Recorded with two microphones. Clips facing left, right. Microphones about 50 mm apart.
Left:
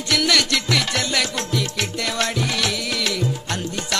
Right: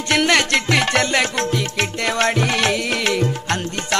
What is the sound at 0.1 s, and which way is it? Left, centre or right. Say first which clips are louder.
Music: right 4 dB; right.